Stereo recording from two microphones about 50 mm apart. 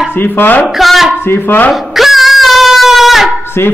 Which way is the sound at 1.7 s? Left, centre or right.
Centre.